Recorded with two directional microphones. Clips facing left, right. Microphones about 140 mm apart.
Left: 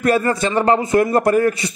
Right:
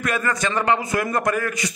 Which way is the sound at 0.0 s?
30° left (ahead or behind).